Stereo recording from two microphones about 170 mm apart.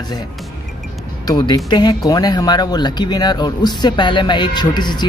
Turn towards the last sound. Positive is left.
turn(degrees=25)  # may be behind; listen again after turning